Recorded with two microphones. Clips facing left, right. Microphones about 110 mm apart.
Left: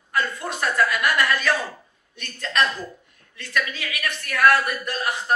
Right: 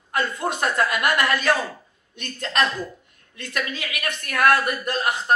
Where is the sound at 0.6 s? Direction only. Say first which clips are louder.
Left 2 dB; 50° right (ahead or behind).